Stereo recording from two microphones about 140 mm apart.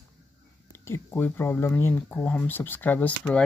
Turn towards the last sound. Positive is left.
turn(degrees=10)  # may be behind; listen again after turning